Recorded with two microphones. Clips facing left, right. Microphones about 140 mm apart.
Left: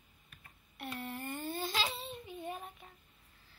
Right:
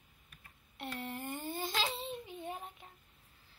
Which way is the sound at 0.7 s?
20° right (ahead or behind).